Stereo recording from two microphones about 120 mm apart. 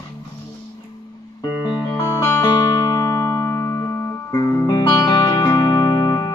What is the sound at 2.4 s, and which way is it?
Music, 30° left (ahead or behind).